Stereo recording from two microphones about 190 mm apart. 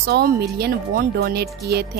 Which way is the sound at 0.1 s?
55° right (ahead or behind).